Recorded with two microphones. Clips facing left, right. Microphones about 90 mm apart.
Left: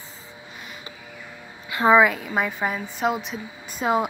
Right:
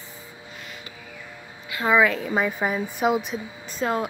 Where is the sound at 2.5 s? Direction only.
5° right (ahead or behind).